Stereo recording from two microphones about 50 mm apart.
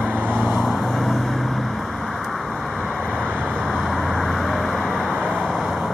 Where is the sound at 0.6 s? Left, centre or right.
Centre.